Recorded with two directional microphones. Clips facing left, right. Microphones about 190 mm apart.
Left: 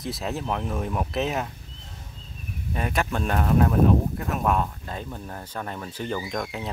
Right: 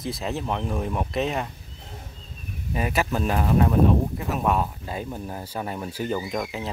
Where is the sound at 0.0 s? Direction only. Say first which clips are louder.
Right 1 dB; centre (ahead or behind).